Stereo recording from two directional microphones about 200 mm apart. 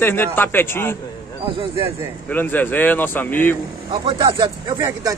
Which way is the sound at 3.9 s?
25° right (ahead or behind).